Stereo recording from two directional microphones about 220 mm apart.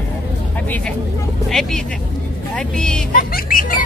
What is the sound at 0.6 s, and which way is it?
Speech, 5° left (ahead or behind).